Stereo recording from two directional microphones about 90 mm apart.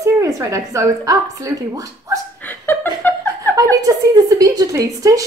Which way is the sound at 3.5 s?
40° right (ahead or behind).